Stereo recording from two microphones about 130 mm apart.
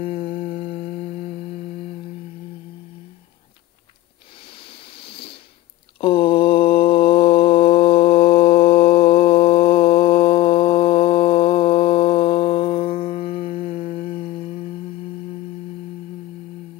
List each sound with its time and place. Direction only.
0.0 s humming: 45° left (ahead or behind)
4.9 s a sound: 45° left (ahead or behind)
5.9 s mantra: 45° left (ahead or behind)